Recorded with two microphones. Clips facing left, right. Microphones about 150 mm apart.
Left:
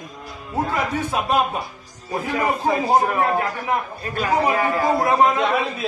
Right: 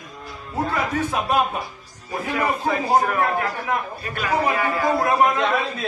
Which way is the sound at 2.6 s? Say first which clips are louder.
Left 2 dB; 20° left (ahead or behind).